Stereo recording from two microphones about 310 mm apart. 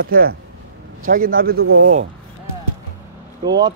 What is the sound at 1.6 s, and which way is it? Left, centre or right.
Speech, right.